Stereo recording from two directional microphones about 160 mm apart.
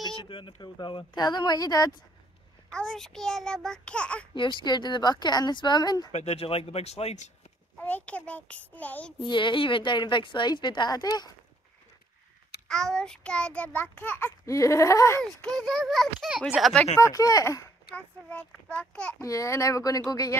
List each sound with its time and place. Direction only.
0.0 s speech: 30° left (ahead or behind)
2.7 s a child's voice: 5° left (ahead or behind)
4.4 s speech: 30° left (ahead or behind)
6.1 s speech: 40° left (ahead or behind)
7.8 s child singing: 10° left (ahead or behind)
9.2 s speech: 30° left (ahead or behind)
12.6 s child singing: 5° left (ahead or behind)
15.4 s a child's voice: 5° left (ahead or behind)
17.0 s speech: 20° left (ahead or behind)
17.9 s child singing: 10° left (ahead or behind)
19.2 s speech: 20° left (ahead or behind)